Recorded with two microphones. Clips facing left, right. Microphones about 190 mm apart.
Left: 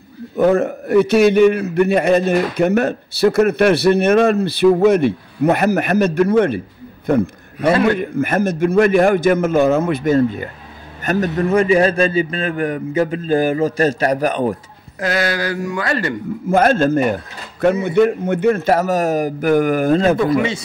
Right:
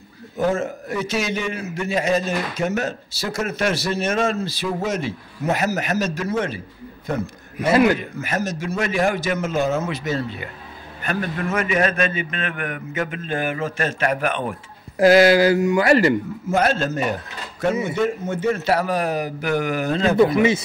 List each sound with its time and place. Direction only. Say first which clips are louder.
0.4 s a man's voice: left 7 dB; 60° left (ahead or behind); by 14.6 s 35° left (ahead or behind)
15.0 s speech: right 7 dB; 30° right (ahead or behind)
16.4 s a man's voice: left 7 dB; 50° left (ahead or behind)
20.2 s speech: right 1 dB; 20° right (ahead or behind)